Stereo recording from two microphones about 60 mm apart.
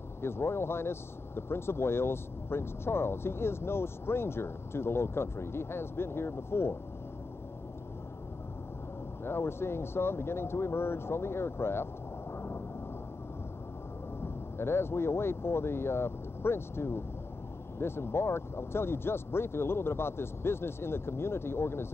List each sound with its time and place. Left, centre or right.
0.2 s speech: left
9.2 s speech: left
14.2 s speech: left